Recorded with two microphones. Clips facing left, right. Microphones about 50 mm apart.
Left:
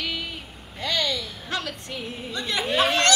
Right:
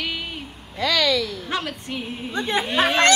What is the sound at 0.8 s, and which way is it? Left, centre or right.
Speech, right.